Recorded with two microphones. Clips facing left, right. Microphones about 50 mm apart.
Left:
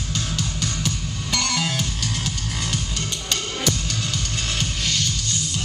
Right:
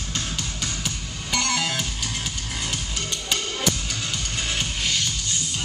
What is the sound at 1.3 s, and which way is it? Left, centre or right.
Music, centre.